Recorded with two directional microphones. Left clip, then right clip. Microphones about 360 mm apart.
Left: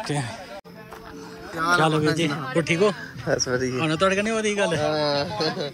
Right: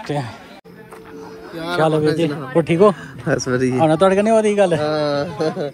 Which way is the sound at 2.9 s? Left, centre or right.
Right.